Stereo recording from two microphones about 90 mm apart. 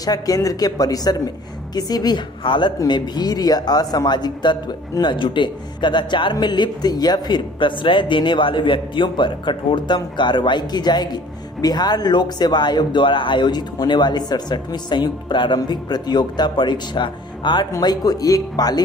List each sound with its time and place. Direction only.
0.0 s speech: 45° left (ahead or behind); by 2.7 s 60° left (ahead or behind)
2.9 s speech: 50° left (ahead or behind)
17.7 s speech: 45° left (ahead or behind)